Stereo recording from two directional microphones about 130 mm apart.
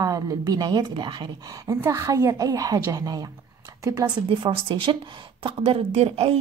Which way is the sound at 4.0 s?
40° right (ahead or behind).